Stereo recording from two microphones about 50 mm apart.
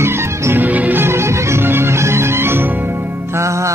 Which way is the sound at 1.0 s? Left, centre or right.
Right.